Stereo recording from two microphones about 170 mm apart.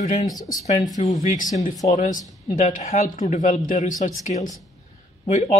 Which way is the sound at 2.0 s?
50° left (ahead or behind).